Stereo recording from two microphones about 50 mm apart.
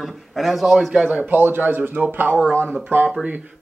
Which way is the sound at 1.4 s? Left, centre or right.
Right.